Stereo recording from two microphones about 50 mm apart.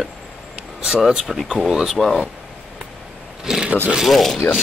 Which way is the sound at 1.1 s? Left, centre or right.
Centre.